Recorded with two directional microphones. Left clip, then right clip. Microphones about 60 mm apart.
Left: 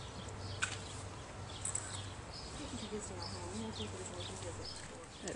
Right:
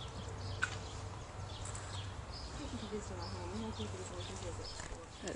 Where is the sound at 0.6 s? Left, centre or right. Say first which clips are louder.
Right 1 dB; left.